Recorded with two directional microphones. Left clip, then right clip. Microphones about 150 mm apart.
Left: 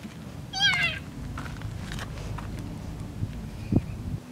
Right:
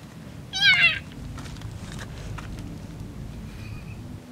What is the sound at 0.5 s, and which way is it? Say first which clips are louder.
Cat: right 6 dB; 20° right (ahead or behind).